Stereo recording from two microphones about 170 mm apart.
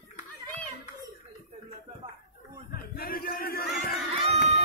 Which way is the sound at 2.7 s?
60° left (ahead or behind).